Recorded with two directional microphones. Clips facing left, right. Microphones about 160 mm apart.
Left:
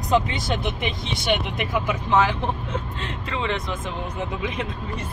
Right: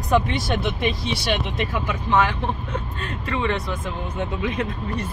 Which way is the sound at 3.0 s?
90° left.